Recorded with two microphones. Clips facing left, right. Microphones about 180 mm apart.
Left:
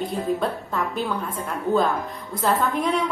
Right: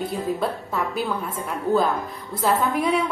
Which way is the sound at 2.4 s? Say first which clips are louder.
Right 1 dB; 5° right (ahead or behind).